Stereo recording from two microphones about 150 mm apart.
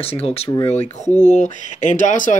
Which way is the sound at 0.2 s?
40° left (ahead or behind).